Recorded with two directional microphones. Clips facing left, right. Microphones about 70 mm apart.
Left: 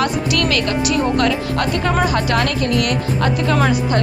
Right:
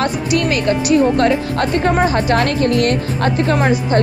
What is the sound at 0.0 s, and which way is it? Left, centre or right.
Speech, right.